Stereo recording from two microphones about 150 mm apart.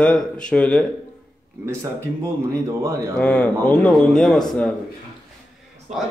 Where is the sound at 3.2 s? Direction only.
10° left (ahead or behind).